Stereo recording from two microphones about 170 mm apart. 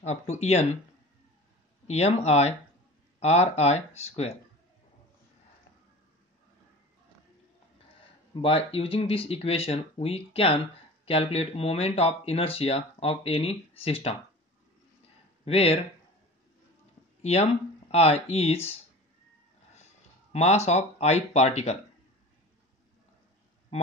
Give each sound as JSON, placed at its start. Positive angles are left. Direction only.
{"t": 0.0, "sound": "speech", "side_deg": 40}
{"t": 1.9, "sound": "speech", "side_deg": 40}
{"t": 8.4, "sound": "speech", "side_deg": 35}
{"t": 15.4, "sound": "speech", "side_deg": 35}
{"t": 17.2, "sound": "speech", "side_deg": 40}
{"t": 20.3, "sound": "speech", "side_deg": 40}